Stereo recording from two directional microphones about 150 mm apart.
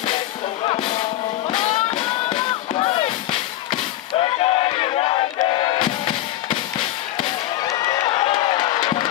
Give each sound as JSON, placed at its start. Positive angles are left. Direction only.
{"t": 0.7, "sound": "music", "side_deg": 35}
{"t": 7.6, "sound": "run", "side_deg": 25}